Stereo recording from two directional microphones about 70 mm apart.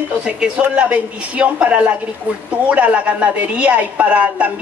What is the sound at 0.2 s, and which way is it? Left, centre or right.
A woman's voice, centre.